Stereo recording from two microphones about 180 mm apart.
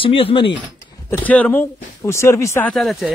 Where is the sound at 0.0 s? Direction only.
30° left (ahead or behind).